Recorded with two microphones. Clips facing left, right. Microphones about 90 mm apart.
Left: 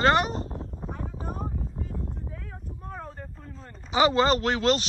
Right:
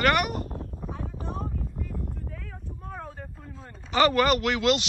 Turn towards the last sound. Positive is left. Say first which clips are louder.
# even
turn(degrees=35)  # may be behind; listen again after turning